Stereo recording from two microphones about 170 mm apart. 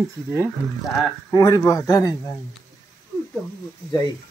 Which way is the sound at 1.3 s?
20° left (ahead or behind).